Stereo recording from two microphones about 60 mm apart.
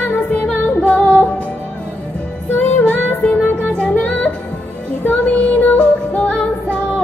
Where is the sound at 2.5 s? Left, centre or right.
Left.